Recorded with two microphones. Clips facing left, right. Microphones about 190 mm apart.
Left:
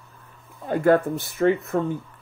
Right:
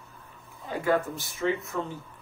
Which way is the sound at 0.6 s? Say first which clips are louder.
Left 8 dB; 55° left (ahead or behind).